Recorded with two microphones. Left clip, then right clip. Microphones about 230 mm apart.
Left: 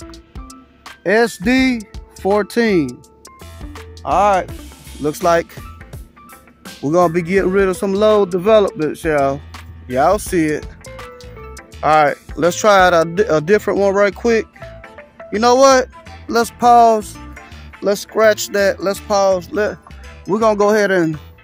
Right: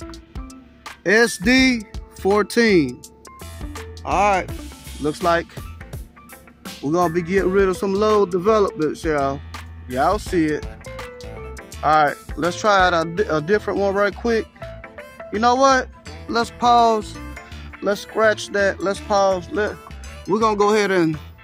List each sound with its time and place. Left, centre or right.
1.0 s speech: left
4.0 s music: left
6.9 s speech: left
8.4 s music: left
8.9 s speech: left
10.6 s music: centre
11.8 s speech: left
14.6 s music: centre
15.3 s speech: left
16.3 s music: left
17.7 s speech: left
20.2 s speech: left